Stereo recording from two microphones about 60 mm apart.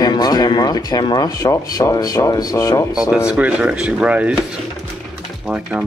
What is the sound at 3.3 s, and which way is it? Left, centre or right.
Speech, centre.